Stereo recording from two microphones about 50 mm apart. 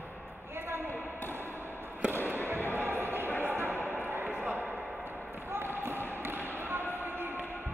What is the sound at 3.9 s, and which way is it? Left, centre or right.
Basketball bounce, right.